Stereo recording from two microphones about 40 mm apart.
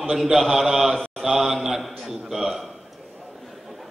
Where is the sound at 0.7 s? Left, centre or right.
Centre.